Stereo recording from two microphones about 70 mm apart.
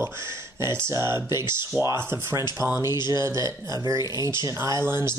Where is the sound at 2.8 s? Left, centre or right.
Left.